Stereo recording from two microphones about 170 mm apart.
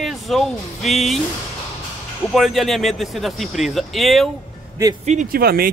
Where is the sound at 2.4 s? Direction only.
Centre (ahead or behind).